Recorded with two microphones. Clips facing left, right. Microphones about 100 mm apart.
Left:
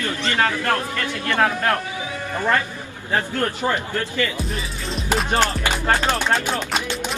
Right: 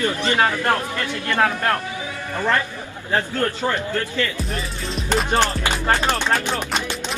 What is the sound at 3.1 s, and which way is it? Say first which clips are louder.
A man's voice: right 1 dB; 20° left (ahead or behind).